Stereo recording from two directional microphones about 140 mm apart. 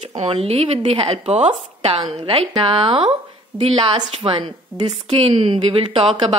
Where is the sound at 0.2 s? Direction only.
45° right (ahead or behind).